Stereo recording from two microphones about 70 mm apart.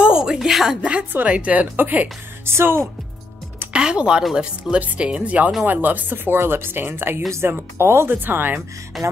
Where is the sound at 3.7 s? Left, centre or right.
Centre.